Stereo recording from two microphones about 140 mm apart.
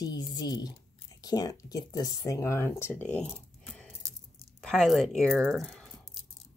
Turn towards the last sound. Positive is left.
turn(degrees=0)  # may be behind; listen again after turning